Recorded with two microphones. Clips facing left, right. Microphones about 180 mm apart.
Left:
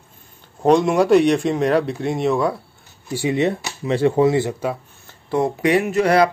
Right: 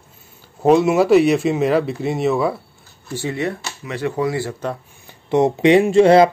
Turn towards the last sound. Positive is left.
turn(degrees=-25)  # may be behind; listen again after turning